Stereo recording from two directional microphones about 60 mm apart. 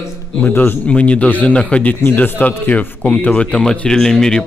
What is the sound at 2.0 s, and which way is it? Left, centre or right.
A man's voice, left.